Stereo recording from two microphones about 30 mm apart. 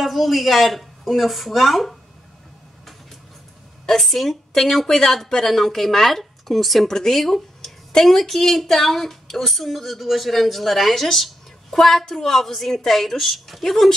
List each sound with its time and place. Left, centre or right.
0.0 s speech: centre
4.0 s speech: centre
6.9 s speech: centre
7.2 s speech: centre